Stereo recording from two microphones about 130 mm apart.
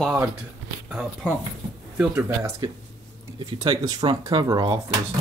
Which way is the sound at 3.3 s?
35° right (ahead or behind).